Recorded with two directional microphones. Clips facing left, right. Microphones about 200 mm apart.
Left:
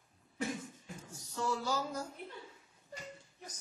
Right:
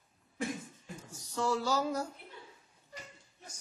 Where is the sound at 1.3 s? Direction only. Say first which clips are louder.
Right 4 dB; 90° right; by 2.1 s 75° right (ahead or behind).